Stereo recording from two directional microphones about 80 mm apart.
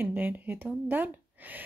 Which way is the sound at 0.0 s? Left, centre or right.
Right.